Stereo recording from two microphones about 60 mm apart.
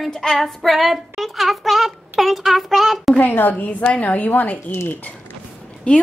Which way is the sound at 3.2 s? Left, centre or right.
Left.